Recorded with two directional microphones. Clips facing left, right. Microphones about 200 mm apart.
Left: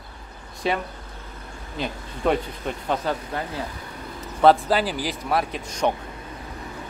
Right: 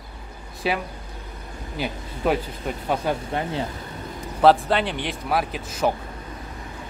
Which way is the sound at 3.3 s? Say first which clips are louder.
Right 3 dB; 25° right (ahead or behind).